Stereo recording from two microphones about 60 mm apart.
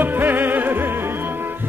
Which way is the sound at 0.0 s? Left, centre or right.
Right.